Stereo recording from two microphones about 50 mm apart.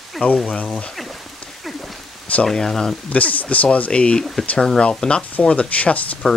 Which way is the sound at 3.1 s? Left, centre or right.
Left.